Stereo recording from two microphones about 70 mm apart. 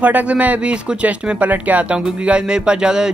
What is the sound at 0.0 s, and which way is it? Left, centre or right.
Speech, right.